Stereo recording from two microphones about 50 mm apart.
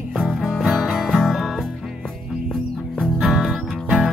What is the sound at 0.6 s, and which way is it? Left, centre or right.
Music, centre.